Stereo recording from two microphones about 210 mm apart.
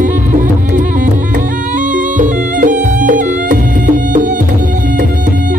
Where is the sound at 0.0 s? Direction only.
40° right (ahead or behind).